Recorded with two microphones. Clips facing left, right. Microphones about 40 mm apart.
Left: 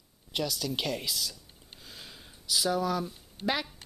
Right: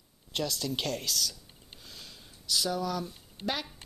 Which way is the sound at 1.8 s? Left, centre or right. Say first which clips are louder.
Left 2 dB; centre.